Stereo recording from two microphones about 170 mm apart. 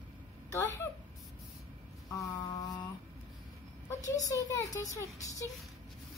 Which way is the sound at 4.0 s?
20° left (ahead or behind).